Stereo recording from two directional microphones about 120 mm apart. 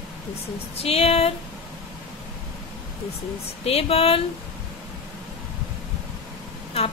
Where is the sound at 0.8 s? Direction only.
60° left (ahead or behind).